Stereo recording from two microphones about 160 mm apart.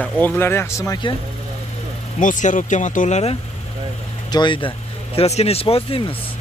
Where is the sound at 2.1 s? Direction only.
55° left (ahead or behind).